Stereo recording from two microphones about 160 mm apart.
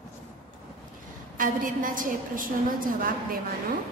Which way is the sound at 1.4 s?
60° right (ahead or behind).